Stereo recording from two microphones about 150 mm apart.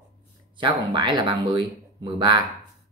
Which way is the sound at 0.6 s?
30° right (ahead or behind).